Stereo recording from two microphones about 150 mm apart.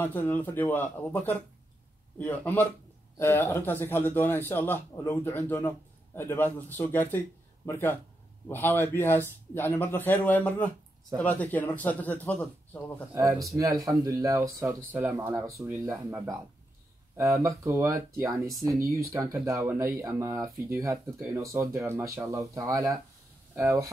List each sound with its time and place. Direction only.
0.0 s speech: 10° left (ahead or behind)
13.8 s speech: 25° right (ahead or behind)